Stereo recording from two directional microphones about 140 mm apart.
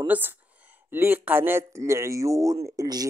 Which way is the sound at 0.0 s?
15° right (ahead or behind).